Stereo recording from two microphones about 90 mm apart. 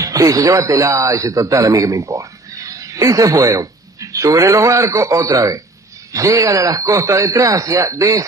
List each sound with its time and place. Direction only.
0.0 s speech: 40° right (ahead or behind)